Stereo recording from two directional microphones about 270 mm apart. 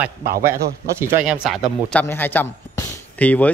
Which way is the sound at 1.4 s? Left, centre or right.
Centre.